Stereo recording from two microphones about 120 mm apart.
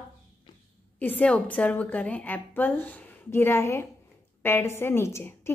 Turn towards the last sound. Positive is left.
turn(degrees=20)  # may be behind; listen again after turning